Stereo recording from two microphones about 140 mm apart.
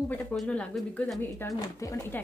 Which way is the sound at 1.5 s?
25° left (ahead or behind).